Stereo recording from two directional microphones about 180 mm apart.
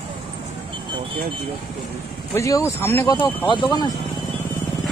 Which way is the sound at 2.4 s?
15° left (ahead or behind).